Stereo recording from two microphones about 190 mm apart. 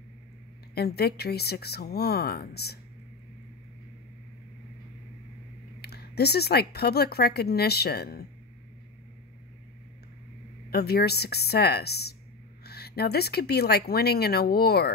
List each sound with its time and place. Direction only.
0.7 s a woman's voice: 55° left (ahead or behind)
5.8 s a woman's voice: 55° left (ahead or behind)
10.7 s a woman's voice: 55° left (ahead or behind)